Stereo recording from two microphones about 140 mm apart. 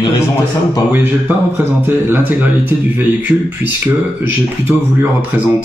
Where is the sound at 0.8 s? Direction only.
15° right (ahead or behind).